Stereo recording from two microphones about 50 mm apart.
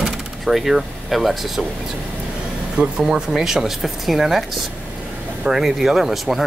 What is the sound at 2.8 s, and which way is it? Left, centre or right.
Speech, right.